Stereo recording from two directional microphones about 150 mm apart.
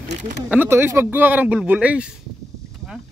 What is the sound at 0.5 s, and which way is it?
Speech, 15° right (ahead or behind).